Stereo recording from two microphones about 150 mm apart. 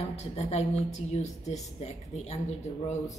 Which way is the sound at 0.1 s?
45° left (ahead or behind).